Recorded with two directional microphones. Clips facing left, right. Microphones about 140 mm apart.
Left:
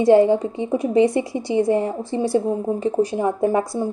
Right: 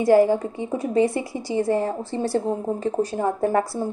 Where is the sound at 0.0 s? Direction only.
25° left (ahead or behind).